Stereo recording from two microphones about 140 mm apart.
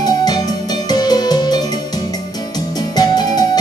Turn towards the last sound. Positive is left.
turn(degrees=30)  # may be behind; listen again after turning